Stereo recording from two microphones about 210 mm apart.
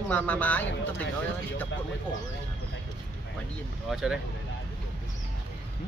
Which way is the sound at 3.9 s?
Centre (ahead or behind).